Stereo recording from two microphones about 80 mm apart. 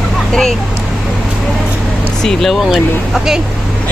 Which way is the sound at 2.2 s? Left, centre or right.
Centre.